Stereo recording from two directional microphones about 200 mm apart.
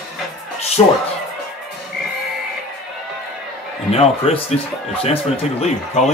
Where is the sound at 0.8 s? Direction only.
20° left (ahead or behind).